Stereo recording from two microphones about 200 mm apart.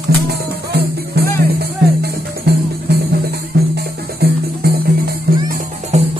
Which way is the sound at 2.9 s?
55° right (ahead or behind).